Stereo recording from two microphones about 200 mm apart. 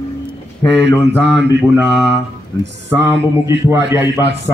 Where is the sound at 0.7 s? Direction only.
60° right (ahead or behind).